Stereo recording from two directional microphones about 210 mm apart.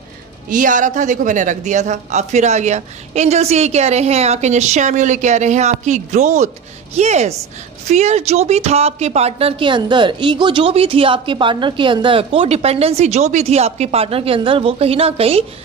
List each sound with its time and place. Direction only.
0.5 s a woman's voice: 40° right (ahead or behind)